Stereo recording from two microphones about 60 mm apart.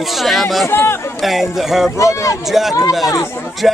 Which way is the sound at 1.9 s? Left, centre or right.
Left.